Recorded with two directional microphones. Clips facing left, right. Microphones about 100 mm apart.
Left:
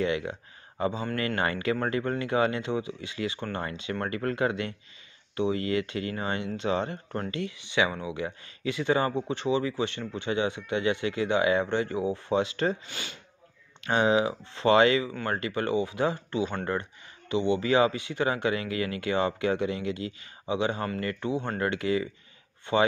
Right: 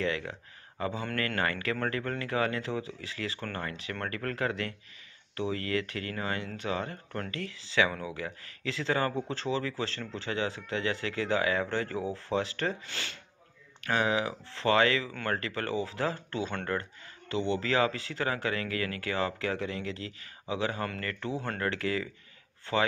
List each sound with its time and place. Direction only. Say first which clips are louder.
0.0 s speech: left 4 dB; 20° left (ahead or behind)
13.7 s speech: left 5 dB; 25° left (ahead or behind)